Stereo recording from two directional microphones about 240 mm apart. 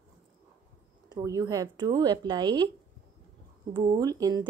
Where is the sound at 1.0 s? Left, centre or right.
Centre.